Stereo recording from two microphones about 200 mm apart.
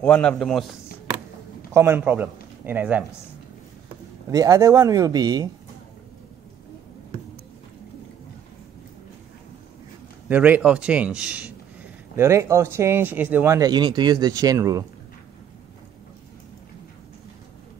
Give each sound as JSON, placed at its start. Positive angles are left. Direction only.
{"t": 0.0, "sound": "a man's voice", "side_deg": 5}
{"t": 1.7, "sound": "speech", "side_deg": -10}
{"t": 4.3, "sound": "speech", "side_deg": -15}
{"t": 10.2, "sound": "speech", "side_deg": -10}